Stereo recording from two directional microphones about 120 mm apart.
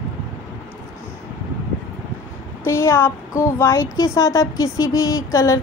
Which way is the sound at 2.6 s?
20° left (ahead or behind).